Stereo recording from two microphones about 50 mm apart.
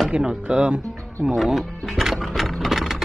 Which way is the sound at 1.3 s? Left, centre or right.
Centre.